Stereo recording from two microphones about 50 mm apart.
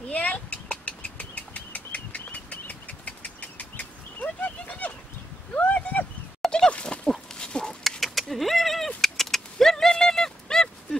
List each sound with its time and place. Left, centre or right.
0.1 s a sound: left
6.7 s goat: left
7.1 s dog: centre
8.0 s keys jangling: centre